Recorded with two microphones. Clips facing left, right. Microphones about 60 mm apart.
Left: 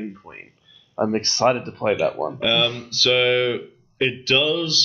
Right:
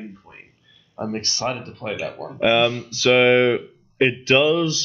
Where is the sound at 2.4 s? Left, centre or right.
Right.